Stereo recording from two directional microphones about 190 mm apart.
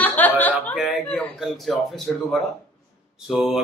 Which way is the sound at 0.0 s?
10° left (ahead or behind).